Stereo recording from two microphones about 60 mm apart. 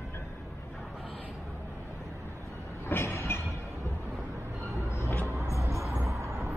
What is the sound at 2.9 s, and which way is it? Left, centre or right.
Train, left.